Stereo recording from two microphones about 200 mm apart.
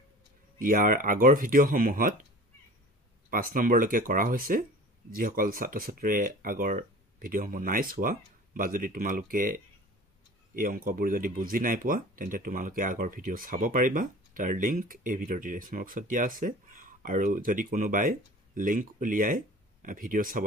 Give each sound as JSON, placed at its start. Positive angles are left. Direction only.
{"t": 0.6, "sound": "speech", "side_deg": -45}
{"t": 3.3, "sound": "speech", "side_deg": -45}